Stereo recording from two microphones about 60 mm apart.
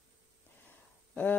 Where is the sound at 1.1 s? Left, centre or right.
Left.